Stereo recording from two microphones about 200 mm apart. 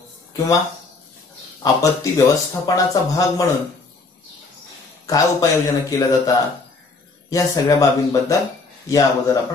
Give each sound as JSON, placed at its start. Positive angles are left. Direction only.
{"t": 1.6, "sound": "speech", "side_deg": 15}
{"t": 5.0, "sound": "speech", "side_deg": 15}